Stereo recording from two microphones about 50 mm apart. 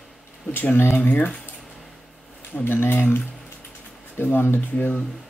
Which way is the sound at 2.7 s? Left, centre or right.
Left.